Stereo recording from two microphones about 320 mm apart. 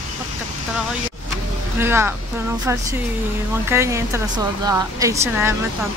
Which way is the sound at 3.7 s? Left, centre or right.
Centre.